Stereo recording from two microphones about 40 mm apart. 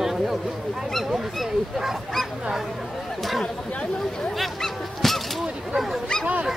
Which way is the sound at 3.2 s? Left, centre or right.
Centre.